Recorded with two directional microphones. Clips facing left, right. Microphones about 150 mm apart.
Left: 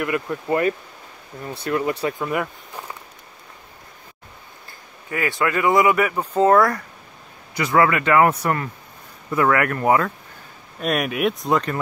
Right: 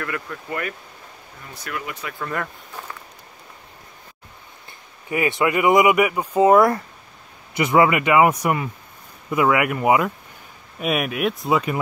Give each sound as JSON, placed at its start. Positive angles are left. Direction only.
{"t": 0.0, "sound": "speech", "side_deg": 20}
{"t": 2.1, "sound": "speech", "side_deg": 10}
{"t": 5.1, "sound": "speech", "side_deg": -20}